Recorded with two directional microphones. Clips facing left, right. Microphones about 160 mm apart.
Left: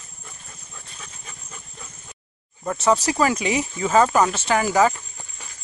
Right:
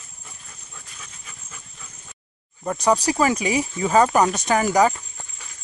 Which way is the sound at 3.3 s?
35° right (ahead or behind).